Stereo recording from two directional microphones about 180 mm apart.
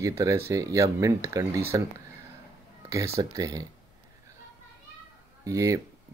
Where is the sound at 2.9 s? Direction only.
15° right (ahead or behind).